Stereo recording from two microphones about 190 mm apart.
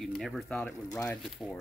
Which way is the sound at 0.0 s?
Centre (ahead or behind).